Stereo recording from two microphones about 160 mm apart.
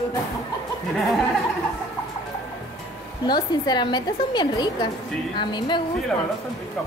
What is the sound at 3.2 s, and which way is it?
A woman's voice, 25° left (ahead or behind).